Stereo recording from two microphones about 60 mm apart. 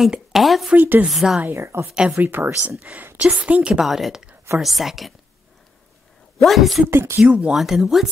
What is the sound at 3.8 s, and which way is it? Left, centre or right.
Speech, centre.